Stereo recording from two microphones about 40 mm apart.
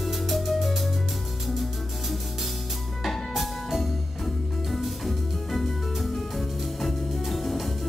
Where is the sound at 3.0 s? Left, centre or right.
Centre.